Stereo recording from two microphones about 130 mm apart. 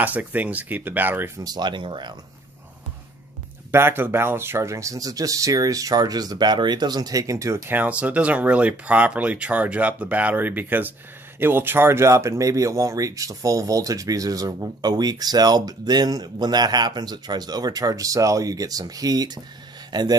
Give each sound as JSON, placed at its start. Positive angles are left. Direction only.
{"t": 0.0, "sound": "speech", "side_deg": -10}
{"t": 1.4, "sound": "speech", "side_deg": -35}
{"t": 3.7, "sound": "a man's voice", "side_deg": -15}